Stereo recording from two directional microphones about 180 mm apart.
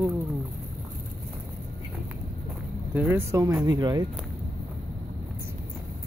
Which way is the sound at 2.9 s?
10° right (ahead or behind).